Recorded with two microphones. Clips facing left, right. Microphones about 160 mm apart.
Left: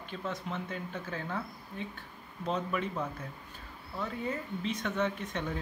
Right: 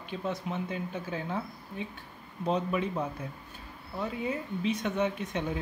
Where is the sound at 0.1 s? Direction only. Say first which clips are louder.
Right 4 dB; 15° right (ahead or behind).